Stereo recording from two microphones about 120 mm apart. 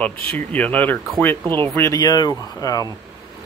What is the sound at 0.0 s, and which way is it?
Speech, 10° left (ahead or behind).